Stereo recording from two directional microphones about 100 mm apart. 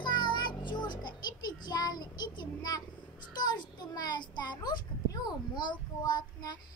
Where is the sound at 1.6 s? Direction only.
45° left (ahead or behind).